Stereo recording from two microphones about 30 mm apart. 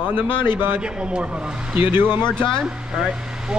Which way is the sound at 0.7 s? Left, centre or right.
Right.